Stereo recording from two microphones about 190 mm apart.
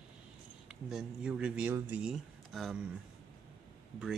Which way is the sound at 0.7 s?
5° right (ahead or behind).